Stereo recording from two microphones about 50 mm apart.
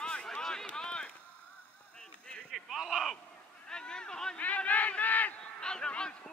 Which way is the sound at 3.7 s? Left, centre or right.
Centre.